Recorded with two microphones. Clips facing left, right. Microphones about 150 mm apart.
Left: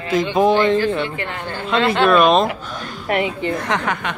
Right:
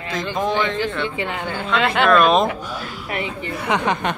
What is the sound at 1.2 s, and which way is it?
Speech, 15° right (ahead or behind).